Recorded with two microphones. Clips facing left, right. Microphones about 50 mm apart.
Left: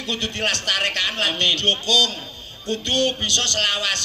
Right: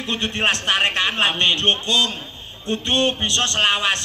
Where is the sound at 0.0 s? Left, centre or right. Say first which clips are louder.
Right 3 dB; right.